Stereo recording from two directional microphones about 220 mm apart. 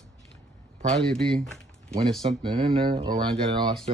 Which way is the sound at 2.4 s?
25° right (ahead or behind).